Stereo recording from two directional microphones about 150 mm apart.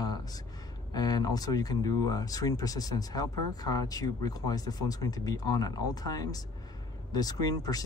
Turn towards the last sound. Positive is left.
turn(degrees=25)  # may be behind; listen again after turning